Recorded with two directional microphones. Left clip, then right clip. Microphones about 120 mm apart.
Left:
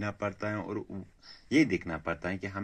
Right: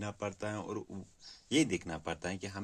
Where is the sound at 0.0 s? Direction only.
35° right (ahead or behind).